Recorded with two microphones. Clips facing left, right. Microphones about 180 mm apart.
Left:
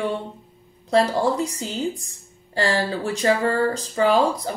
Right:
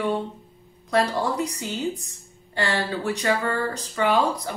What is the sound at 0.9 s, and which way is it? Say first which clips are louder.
Speech: left 4 dB; 30° left (ahead or behind).